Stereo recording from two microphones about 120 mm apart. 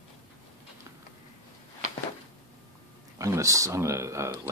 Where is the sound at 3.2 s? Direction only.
25° right (ahead or behind).